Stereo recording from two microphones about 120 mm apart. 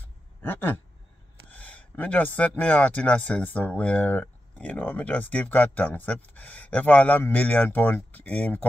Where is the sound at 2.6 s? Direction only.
15° left (ahead or behind).